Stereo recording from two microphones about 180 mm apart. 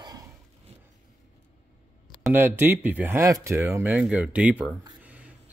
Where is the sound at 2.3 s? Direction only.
10° right (ahead or behind).